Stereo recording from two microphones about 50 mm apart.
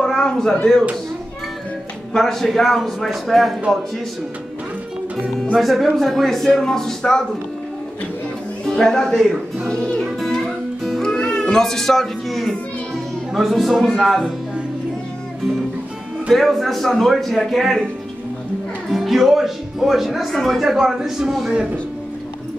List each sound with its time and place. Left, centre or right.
0.0 s a sound: centre
2.1 s speech: centre
5.6 s speech: centre
8.6 s speech: centre
9.7 s music: centre
13.3 s speech: centre
16.3 s speech: centre
18.9 s speech: centre